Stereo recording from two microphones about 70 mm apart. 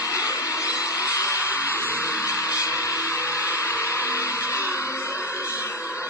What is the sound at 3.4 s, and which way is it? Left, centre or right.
Hair dryer, right.